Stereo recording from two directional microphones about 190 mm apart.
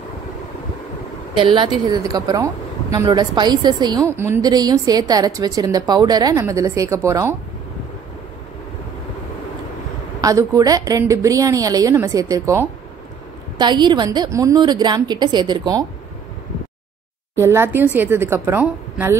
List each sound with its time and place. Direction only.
1.3 s a woman's voice: 25° right (ahead or behind)
10.2 s a woman's voice: 15° right (ahead or behind)
17.4 s a woman's voice: 15° right (ahead or behind)